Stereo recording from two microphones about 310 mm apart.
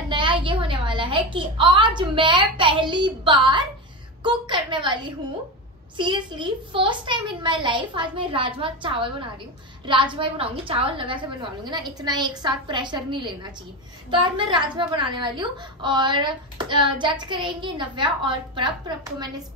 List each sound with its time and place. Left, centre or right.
0.1 s a woman's voice: centre
10.1 s a woman's voice: centre